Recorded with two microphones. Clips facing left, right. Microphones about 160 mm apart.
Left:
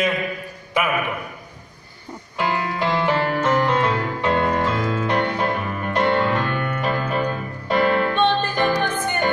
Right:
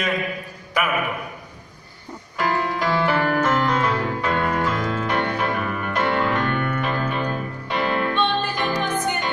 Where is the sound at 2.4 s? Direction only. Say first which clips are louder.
Even; 25° left (ahead or behind).